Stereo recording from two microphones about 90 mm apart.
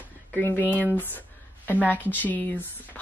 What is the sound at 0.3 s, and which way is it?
Speech, 20° left (ahead or behind).